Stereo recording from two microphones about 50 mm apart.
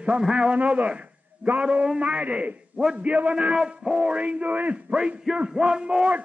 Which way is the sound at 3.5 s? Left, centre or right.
Centre.